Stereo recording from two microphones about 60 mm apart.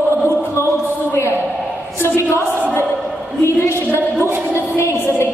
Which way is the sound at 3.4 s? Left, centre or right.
Left.